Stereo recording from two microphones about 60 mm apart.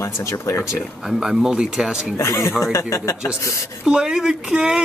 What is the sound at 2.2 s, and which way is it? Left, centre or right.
Speech, left.